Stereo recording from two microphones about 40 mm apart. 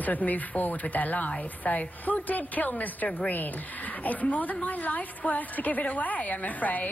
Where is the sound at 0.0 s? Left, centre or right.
Left.